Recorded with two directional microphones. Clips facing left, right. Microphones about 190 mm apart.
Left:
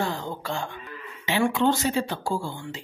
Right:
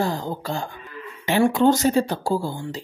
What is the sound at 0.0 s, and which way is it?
Speech, 40° right (ahead or behind).